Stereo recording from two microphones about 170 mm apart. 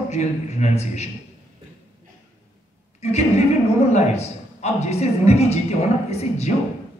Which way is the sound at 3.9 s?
40° left (ahead or behind).